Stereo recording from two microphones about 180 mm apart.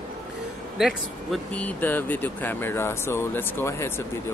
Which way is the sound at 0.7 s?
Centre (ahead or behind).